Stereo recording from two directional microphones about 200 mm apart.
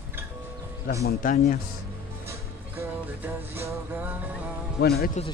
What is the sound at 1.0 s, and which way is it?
Speech, 45° left (ahead or behind).